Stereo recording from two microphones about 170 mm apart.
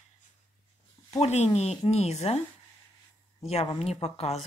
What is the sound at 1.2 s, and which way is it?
Speech, 40° left (ahead or behind).